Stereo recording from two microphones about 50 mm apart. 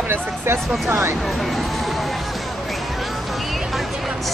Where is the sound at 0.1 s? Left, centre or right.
Right.